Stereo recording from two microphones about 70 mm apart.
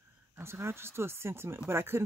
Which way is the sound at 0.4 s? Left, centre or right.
Right.